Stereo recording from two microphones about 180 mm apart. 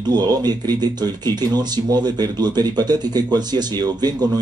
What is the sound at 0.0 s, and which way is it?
Speech, 25° right (ahead or behind).